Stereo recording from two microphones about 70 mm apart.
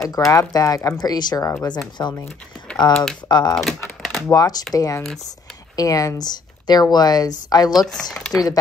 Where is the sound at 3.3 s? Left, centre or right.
Left.